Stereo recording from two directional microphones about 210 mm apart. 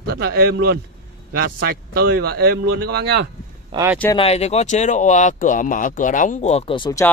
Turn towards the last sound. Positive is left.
turn(degrees=20)  # may be behind; listen again after turning